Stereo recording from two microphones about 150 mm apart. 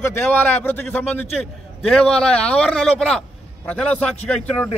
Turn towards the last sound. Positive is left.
turn(degrees=10)  # may be behind; listen again after turning